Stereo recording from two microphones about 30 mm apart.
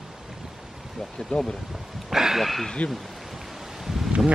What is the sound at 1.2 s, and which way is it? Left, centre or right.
Speech, centre.